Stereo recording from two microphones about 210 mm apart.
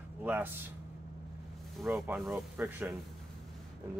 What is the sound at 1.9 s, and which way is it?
Speech, 10° right (ahead or behind).